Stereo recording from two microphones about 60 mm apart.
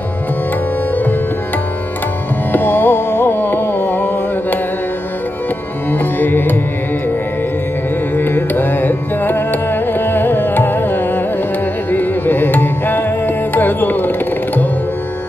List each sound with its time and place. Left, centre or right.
2.5 s carnatic music: left
5.9 s music: left
8.2 s carnatic music: left
11.9 s music: left